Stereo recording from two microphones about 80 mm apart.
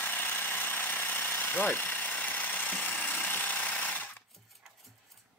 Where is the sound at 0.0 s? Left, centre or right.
Left.